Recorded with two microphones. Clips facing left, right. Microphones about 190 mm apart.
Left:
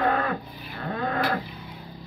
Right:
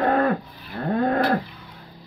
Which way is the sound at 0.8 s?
40° right (ahead or behind).